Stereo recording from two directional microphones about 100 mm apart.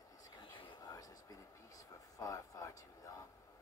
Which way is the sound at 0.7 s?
35° left (ahead or behind).